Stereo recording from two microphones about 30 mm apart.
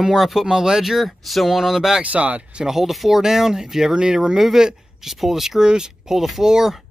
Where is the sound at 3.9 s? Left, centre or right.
Right; by 5.6 s centre.